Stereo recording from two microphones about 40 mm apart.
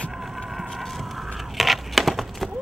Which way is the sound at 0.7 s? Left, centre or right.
Centre.